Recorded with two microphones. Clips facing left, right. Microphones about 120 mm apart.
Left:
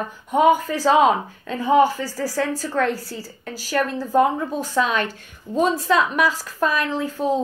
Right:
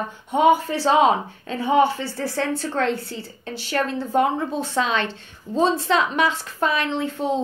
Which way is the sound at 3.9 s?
35° left (ahead or behind).